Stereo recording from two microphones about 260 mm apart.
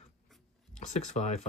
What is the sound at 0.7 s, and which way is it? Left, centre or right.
Speech, left.